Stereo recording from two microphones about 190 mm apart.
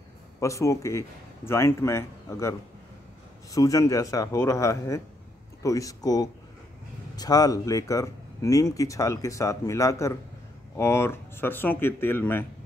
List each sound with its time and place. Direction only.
0.4 s speech: 15° left (ahead or behind)
3.5 s speech: 15° left (ahead or behind)